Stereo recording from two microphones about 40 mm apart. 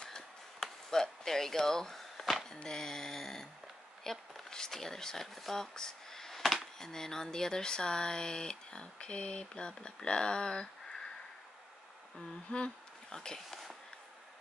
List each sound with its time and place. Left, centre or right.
0.6 s a sound: centre
4.0 s speech: centre
6.8 s speech: centre
12.4 s speech: left
13.1 s speech: centre
13.5 s a sound: centre